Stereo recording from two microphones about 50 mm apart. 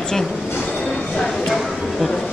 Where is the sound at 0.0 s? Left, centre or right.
Centre.